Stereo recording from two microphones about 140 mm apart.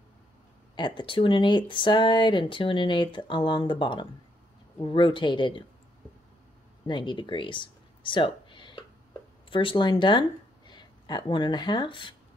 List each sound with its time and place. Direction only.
0.7 s speech: 35° left (ahead or behind)
6.9 s speech: 35° left (ahead or behind)